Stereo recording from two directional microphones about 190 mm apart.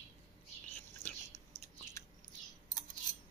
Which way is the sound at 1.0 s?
40° right (ahead or behind).